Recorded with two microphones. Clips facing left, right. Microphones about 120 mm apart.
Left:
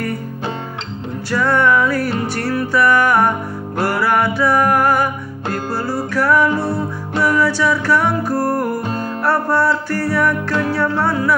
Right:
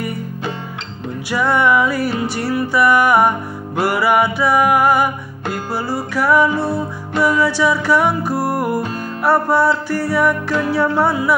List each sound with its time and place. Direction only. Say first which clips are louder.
1.3 s music: even; 10° right (ahead or behind)
7.2 s music: right 1 dB; 15° right (ahead or behind)
7.4 s music: right 1 dB; centre (ahead or behind)